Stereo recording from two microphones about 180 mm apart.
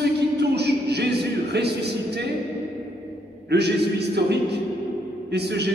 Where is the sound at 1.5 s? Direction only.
65° right (ahead or behind).